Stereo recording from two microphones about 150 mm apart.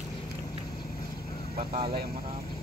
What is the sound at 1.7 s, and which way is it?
Speech, 45° right (ahead or behind).